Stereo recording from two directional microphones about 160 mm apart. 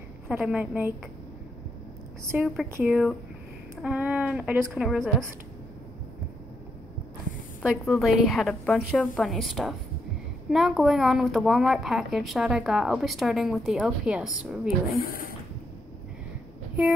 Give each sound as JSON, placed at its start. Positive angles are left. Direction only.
{"t": 0.3, "sound": "a woman's voice", "side_deg": -5}
{"t": 2.3, "sound": "a woman's voice", "side_deg": -5}
{"t": 7.6, "sound": "speech", "side_deg": 0}
{"t": 15.0, "sound": "speech", "side_deg": 65}